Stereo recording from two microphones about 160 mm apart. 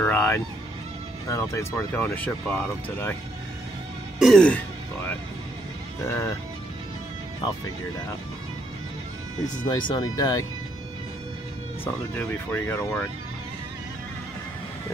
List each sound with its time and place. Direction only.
0.0 s a sound: 15° left (ahead or behind)
1.3 s speech: 20° left (ahead or behind)
4.2 s throat clearing: 5° left (ahead or behind)
6.0 s speech: 15° left (ahead or behind)
9.7 s speech: 25° left (ahead or behind)
11.8 s speech: 15° left (ahead or behind)